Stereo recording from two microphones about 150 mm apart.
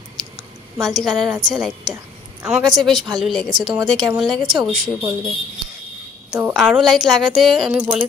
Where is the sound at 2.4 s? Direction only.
5° right (ahead or behind).